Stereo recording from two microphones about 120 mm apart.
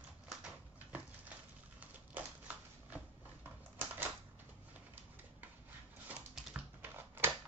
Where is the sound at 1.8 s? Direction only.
10° right (ahead or behind).